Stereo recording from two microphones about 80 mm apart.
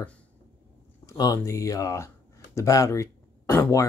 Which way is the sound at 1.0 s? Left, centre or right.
Left.